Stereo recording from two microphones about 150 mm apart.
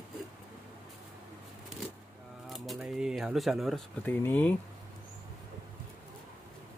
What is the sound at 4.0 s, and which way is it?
Speech, 10° left (ahead or behind).